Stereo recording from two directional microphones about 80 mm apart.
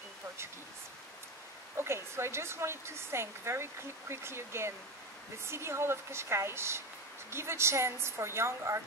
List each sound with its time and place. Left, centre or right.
1.8 s a woman's voice: right